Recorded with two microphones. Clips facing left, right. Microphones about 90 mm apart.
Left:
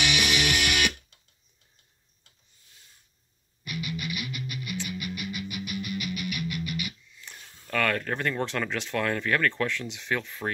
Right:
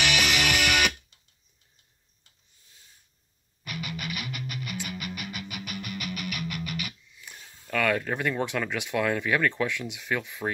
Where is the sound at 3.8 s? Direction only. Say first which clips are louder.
Left 1 dB; 45° right (ahead or behind).